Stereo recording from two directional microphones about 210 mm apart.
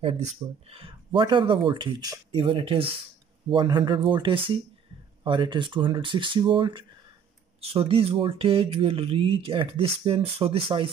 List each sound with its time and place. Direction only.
0.7 s speech: 25° right (ahead or behind)